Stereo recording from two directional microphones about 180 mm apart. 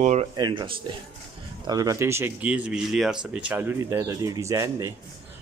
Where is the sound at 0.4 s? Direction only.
25° right (ahead or behind).